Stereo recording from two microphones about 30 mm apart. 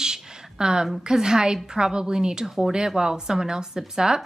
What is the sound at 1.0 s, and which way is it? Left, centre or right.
A woman's voice, right.